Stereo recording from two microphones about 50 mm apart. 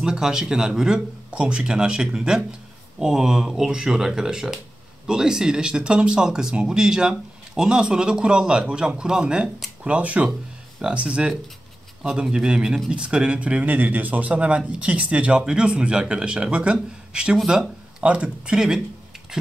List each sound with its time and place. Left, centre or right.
0.0 s a man's voice: centre